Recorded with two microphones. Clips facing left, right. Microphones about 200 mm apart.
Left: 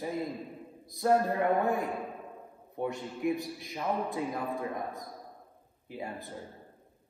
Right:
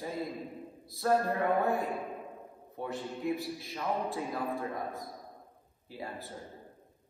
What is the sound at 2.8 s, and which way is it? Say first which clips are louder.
A man's voice: left 3 dB; 15° left (ahead or behind).